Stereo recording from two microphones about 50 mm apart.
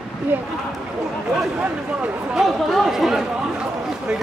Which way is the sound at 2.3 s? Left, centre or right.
Centre.